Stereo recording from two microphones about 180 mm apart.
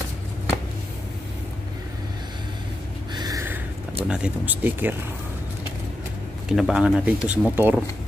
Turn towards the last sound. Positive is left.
turn(degrees=-10)  # may be behind; listen again after turning